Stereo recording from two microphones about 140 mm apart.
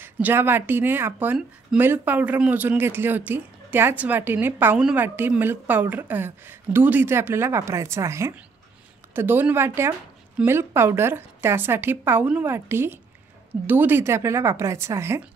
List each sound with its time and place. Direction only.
0.0 s a woman's voice: 15° right (ahead or behind)